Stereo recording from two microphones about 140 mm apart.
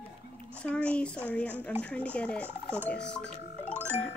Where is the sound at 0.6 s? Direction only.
10° left (ahead or behind).